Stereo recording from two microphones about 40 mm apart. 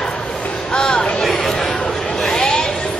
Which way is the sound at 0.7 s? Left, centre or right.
Left.